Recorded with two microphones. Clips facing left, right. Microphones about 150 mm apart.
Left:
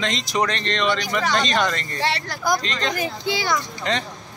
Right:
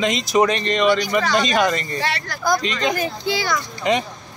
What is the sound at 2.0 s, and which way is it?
Speech, 30° left (ahead or behind).